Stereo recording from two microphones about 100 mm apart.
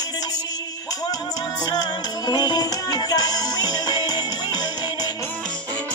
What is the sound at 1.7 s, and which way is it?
Music, 45° left (ahead or behind).